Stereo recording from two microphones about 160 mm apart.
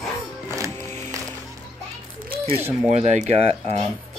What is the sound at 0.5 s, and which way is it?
Music, 20° right (ahead or behind).